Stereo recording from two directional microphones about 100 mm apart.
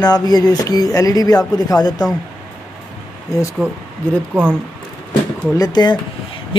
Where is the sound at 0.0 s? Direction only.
40° left (ahead or behind).